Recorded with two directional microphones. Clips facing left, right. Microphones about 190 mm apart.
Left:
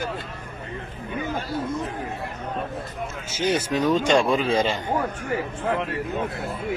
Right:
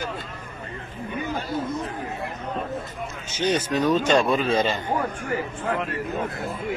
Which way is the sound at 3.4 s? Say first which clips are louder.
Even; 10° left (ahead or behind).